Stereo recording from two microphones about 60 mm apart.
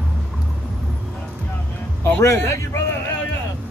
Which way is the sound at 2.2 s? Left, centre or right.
Left.